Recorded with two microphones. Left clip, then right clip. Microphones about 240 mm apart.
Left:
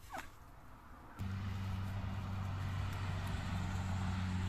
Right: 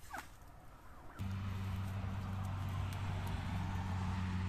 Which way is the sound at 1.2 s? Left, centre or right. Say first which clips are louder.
Even; centre.